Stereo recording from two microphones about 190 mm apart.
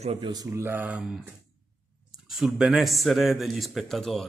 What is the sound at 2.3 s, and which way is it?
Speech, centre (ahead or behind).